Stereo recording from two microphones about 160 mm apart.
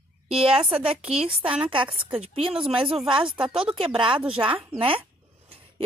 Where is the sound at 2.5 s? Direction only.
5° right (ahead or behind).